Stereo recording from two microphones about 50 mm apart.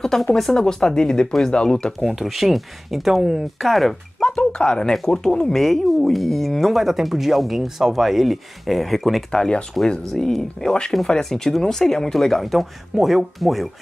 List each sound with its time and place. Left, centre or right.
0.0 s speech: centre
2.0 s speech: centre
4.4 s speech: centre
5.6 s speech: centre
9.3 s speech: centre
9.8 s speech: centre